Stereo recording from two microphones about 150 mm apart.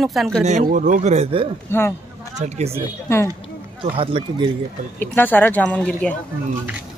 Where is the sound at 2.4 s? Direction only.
45° right (ahead or behind).